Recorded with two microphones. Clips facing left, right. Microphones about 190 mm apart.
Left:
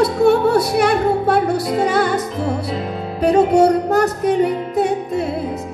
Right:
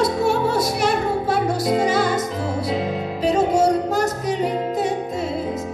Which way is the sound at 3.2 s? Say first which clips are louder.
Left 5 dB; 60° left (ahead or behind).